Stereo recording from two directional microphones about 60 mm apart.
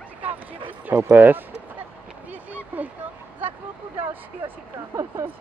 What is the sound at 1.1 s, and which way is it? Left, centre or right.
Speech, right.